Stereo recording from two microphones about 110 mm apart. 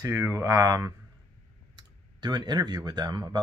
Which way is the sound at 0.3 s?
30° right (ahead or behind).